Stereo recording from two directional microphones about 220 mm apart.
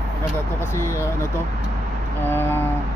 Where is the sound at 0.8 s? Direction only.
10° left (ahead or behind).